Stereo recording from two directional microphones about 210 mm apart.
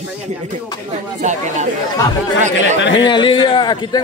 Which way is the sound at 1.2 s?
35° right (ahead or behind).